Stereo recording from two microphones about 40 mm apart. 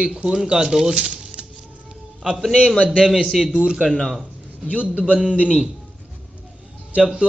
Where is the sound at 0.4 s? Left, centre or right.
Centre.